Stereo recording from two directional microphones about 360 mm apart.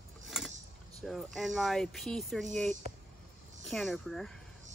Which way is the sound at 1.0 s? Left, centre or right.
Centre.